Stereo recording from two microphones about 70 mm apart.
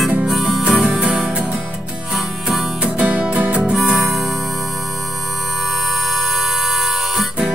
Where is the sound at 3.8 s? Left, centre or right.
Centre.